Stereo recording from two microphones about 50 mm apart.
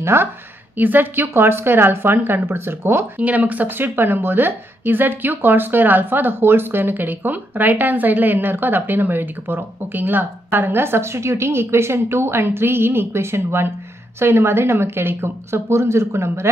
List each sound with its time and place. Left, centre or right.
0.0 s a woman's voice: right
0.7 s speech: right
3.2 s speech: right